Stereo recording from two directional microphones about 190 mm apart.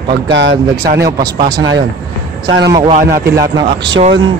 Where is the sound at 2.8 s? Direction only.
45° right (ahead or behind).